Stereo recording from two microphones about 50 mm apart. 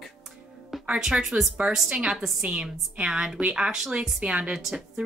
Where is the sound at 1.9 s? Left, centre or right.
Centre.